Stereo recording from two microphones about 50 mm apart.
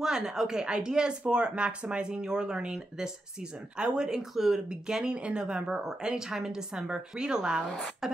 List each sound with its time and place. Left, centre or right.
0.0 s speech: centre
7.6 s a woman's voice: centre